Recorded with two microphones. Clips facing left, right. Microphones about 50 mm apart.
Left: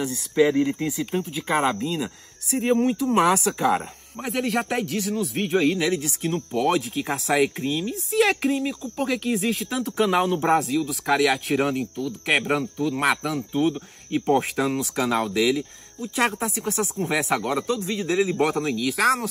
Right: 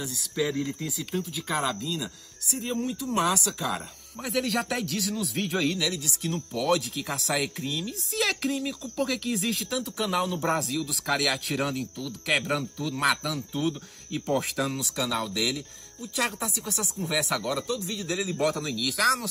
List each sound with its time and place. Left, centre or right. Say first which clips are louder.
0.4 s speech: left 9 dB; left
0.7 s speech: left 7 dB; left
4.2 s speech: left 3 dB; centre
5.4 s speech: left 4 dB; left
5.8 s speech: left 6 dB; left
8.2 s speech: left 7 dB; centre
9.7 s speech: left 7 dB; left
10.5 s speech: left 7 dB; centre
11.5 s speech: left 6 dB; left